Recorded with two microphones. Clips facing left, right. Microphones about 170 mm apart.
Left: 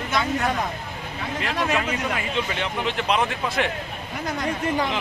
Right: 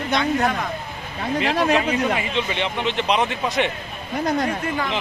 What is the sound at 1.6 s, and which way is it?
Speech, 40° right (ahead or behind).